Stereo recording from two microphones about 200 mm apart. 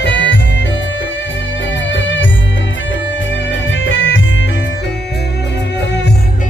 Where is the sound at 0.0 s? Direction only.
65° left (ahead or behind).